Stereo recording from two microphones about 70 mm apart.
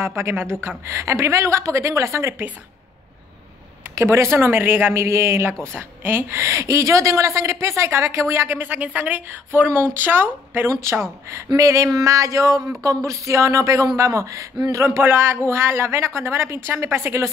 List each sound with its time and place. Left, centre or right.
0.0 s a woman's voice: right
3.9 s speech: right
5.7 s a woman's voice: right
8.5 s a woman's voice: right
9.7 s speech: right
10.7 s a woman's voice: right
14.8 s speech: right